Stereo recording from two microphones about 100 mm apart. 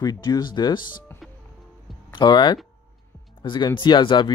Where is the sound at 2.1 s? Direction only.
50° left (ahead or behind).